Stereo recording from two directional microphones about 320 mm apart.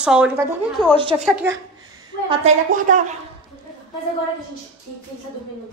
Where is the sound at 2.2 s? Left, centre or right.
Right.